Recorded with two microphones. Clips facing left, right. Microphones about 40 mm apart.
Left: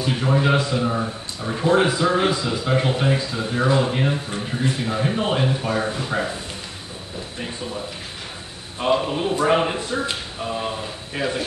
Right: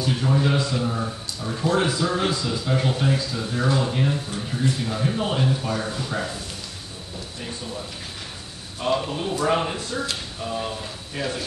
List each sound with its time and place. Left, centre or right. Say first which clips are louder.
0.0 s a man's voice: left 2 dB; left